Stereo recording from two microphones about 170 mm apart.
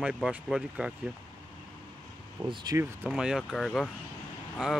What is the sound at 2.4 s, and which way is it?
Speech, 5° right (ahead or behind).